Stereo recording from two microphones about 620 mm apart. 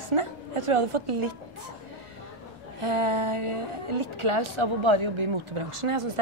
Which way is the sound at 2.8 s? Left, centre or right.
Right.